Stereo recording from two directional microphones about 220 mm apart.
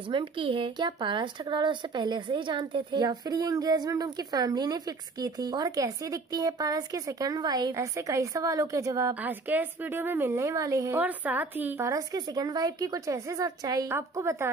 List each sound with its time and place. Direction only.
0.1 s a woman's voice: 25° right (ahead or behind)